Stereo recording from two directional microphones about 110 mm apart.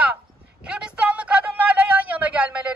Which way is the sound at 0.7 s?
10° right (ahead or behind).